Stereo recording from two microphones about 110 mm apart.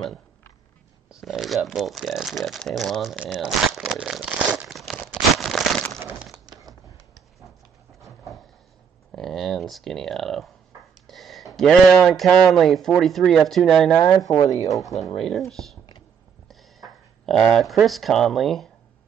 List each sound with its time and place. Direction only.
1.0 s speech: centre (ahead or behind)
3.2 s speech: 10° left (ahead or behind)
3.4 s crumpling: centre (ahead or behind)
6.3 s a sound: 35° right (ahead or behind)
9.1 s speech: centre (ahead or behind)
14.0 s speech: 25° left (ahead or behind)
14.7 s speech: centre (ahead or behind)